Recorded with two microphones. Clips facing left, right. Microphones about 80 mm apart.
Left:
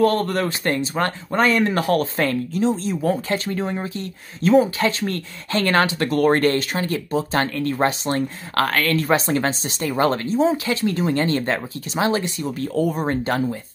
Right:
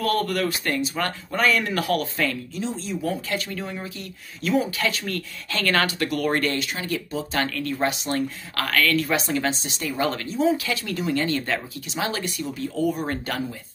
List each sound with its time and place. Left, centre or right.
0.0 s speech: left
12.7 s speech: left
13.0 s speech: left